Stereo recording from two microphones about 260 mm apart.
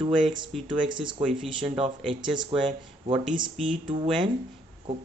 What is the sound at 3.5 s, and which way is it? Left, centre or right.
Speech, centre.